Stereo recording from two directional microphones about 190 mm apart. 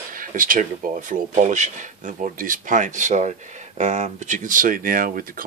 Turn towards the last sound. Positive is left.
turn(degrees=-45)  # may be behind; listen again after turning